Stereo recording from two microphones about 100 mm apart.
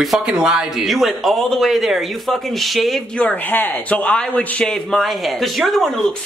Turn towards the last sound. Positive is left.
turn(degrees=0)  # may be behind; listen again after turning